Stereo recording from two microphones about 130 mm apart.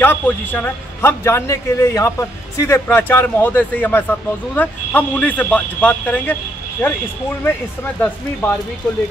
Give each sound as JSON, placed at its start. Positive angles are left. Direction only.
{"t": 0.0, "sound": "a man's voice", "side_deg": 15}
{"t": 8.0, "sound": "a man's voice", "side_deg": 10}